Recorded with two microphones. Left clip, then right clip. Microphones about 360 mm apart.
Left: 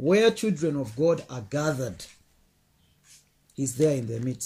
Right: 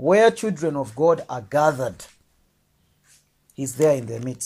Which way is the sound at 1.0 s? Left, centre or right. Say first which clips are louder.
Right 5 dB; right.